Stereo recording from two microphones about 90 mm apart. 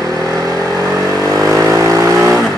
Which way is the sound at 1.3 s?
35° right (ahead or behind).